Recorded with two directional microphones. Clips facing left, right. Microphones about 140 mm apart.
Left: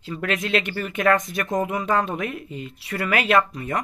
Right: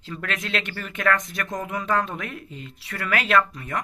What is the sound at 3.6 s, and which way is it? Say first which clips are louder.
Speech: left 3 dB; 30° left (ahead or behind).